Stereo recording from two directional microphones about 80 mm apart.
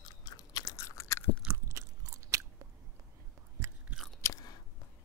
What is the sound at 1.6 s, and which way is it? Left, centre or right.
Biting, right.